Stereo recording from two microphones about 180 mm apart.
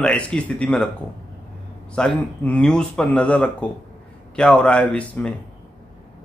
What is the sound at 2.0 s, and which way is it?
A man's voice, 5° left (ahead or behind).